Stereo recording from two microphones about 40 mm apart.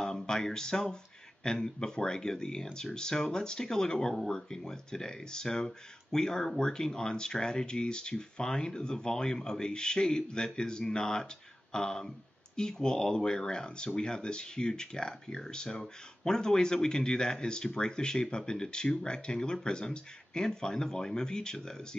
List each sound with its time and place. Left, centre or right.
0.0 s a man's voice: centre